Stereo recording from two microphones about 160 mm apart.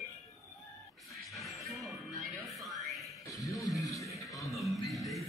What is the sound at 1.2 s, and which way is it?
Music, centre (ahead or behind).